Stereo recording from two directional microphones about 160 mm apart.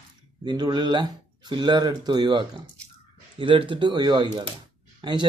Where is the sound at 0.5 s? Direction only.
25° right (ahead or behind).